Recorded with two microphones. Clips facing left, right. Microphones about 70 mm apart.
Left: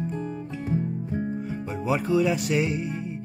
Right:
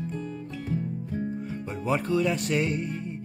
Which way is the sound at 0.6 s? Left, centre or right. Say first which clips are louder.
Left 4 dB; left.